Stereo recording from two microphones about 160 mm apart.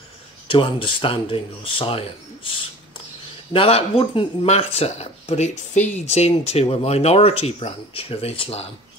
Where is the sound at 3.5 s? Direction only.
35° left (ahead or behind).